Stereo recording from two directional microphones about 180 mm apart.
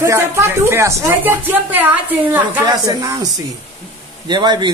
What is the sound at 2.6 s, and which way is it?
A man's voice, 20° right (ahead or behind).